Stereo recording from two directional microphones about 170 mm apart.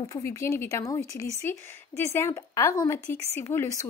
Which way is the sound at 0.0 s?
20° left (ahead or behind).